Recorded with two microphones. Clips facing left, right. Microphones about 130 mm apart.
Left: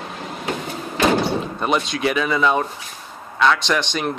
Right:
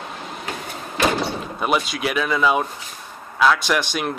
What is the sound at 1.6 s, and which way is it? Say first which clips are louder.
Speech: left 1 dB; 5° right (ahead or behind).